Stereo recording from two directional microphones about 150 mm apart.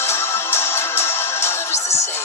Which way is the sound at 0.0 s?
15° left (ahead or behind).